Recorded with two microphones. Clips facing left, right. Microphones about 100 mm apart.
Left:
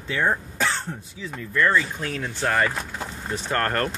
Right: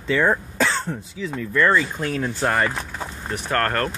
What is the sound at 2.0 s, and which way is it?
Speech, 35° right (ahead or behind).